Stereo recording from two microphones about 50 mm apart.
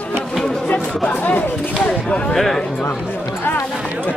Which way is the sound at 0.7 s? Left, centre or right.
Left.